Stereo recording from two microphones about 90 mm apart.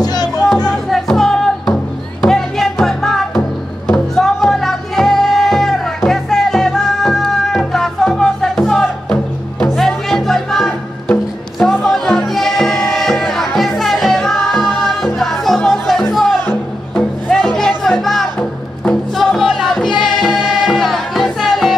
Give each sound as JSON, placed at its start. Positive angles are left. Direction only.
{"t": 0.0, "sound": "music", "side_deg": 50}
{"t": 0.4, "sound": "music", "side_deg": 10}